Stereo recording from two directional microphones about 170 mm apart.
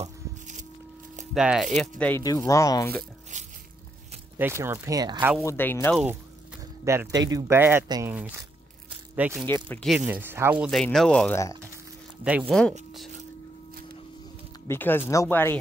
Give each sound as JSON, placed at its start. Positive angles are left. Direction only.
{"t": 0.0, "sound": "music", "side_deg": -45}
{"t": 1.3, "sound": "speech", "side_deg": -5}
{"t": 1.8, "sound": "speech", "side_deg": 10}
{"t": 2.2, "sound": "speech", "side_deg": 20}
{"t": 3.0, "sound": "a sound", "side_deg": -45}
{"t": 4.4, "sound": "speech", "side_deg": -15}
{"t": 5.4, "sound": "speech", "side_deg": 15}
{"t": 5.9, "sound": "a sound", "side_deg": -5}
{"t": 6.6, "sound": "speech", "side_deg": -15}
{"t": 9.5, "sound": "speech", "side_deg": 5}
{"t": 9.9, "sound": "speech", "side_deg": -10}
{"t": 10.7, "sound": "speech", "side_deg": 0}
{"t": 12.3, "sound": "speech", "side_deg": -5}
{"t": 14.7, "sound": "speech", "side_deg": 10}